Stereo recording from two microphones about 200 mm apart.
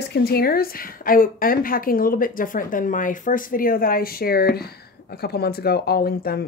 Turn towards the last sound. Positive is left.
turn(degrees=50)  # may be behind; listen again after turning